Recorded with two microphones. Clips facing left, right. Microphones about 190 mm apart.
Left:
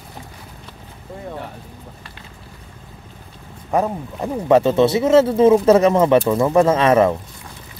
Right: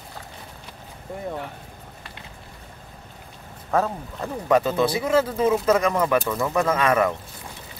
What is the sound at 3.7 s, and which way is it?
Speech, 15° left (ahead or behind).